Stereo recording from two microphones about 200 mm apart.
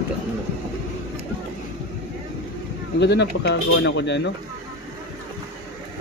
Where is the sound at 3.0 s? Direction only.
60° left (ahead or behind).